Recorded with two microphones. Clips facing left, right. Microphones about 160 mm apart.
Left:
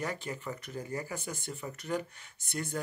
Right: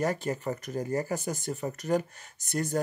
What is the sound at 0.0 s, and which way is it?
Speech, 45° right (ahead or behind).